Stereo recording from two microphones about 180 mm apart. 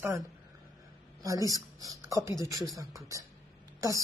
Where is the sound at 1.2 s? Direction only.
20° right (ahead or behind).